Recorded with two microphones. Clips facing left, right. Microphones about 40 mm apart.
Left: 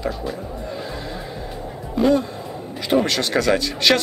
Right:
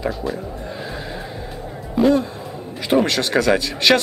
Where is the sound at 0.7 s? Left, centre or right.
Centre.